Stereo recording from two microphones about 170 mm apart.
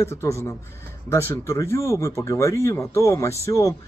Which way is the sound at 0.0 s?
15° left (ahead or behind).